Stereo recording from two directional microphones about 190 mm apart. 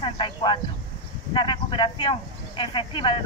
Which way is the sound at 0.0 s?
25° left (ahead or behind).